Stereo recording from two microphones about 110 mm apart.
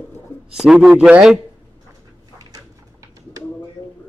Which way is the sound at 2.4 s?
30° right (ahead or behind).